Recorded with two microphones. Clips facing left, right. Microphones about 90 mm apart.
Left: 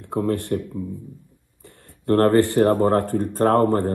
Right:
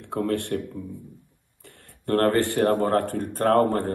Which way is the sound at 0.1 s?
20° left (ahead or behind).